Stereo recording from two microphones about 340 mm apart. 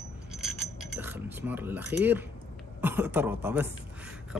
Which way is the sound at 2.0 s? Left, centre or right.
Centre.